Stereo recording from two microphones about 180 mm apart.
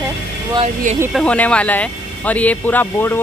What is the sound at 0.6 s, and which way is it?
Speech, 40° right (ahead or behind).